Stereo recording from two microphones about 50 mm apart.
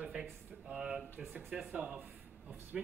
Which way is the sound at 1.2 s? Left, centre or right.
Right.